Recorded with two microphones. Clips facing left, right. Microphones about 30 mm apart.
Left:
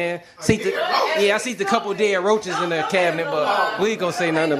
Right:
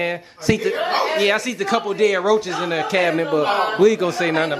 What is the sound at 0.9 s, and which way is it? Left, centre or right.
Chuckle, centre.